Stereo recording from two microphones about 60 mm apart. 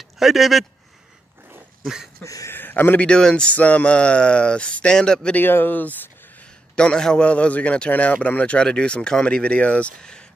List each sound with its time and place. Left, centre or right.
0.2 s speech: centre
2.2 s speech: left
2.5 s a man's voice: left
3.0 s a man's voice: centre
3.4 s a man's voice: left
5.3 s speech: left
6.7 s a man's voice: centre